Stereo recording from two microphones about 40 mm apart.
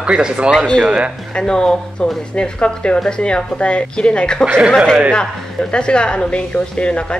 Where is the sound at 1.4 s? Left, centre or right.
Centre.